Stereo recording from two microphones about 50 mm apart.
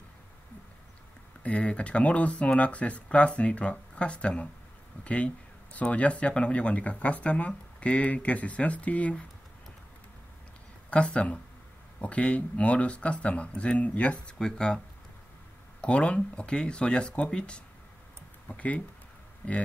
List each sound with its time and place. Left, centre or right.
1.4 s speech: left
10.9 s speech: centre
14.4 s speech: centre
15.8 s speech: left
18.5 s speech: left